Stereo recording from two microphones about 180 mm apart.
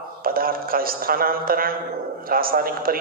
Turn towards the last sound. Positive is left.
turn(degrees=-55)  # may be behind; listen again after turning